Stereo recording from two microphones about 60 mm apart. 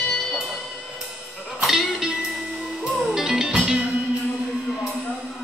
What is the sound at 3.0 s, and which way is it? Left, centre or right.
Music, centre.